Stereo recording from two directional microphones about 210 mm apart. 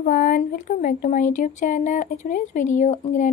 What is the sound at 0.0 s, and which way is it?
Speech, 40° left (ahead or behind).